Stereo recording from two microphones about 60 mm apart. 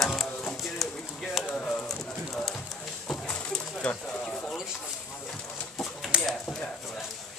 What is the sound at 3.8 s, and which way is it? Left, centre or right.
Speech, centre.